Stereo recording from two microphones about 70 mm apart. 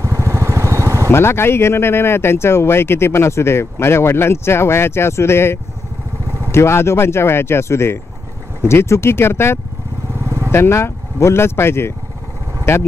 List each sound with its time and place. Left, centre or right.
0.0 s vehicle: right
1.1 s speech: left
10.1 s vehicle: right
10.5 s speech: left